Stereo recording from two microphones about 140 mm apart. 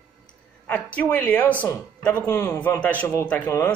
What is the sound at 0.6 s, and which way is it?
A woman's voice, 10° left (ahead or behind).